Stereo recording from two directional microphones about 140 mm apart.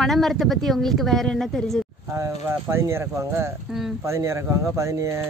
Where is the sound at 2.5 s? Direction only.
20° right (ahead or behind).